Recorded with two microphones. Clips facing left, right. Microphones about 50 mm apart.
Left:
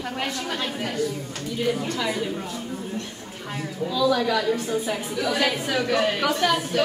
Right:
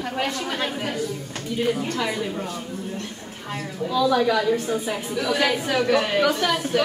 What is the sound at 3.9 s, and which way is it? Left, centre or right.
A woman's voice, centre.